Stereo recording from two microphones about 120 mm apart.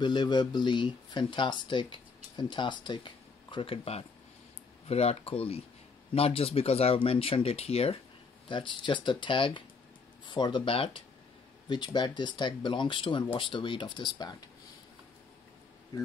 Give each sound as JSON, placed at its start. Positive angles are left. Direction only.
{"t": 0.0, "sound": "speech", "side_deg": 40}
{"t": 8.5, "sound": "speech", "side_deg": 40}